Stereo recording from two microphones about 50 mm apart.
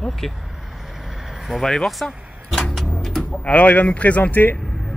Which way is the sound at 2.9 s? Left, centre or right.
Centre.